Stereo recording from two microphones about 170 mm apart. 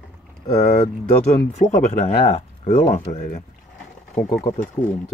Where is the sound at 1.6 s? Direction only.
40° left (ahead or behind).